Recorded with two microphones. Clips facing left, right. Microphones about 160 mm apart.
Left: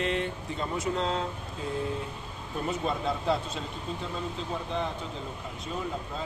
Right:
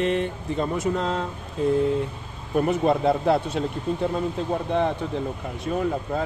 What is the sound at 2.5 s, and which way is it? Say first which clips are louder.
Speech: right 10 dB; 65° right (ahead or behind).